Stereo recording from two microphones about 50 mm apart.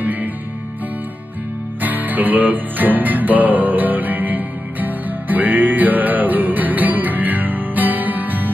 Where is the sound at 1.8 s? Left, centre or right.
Right.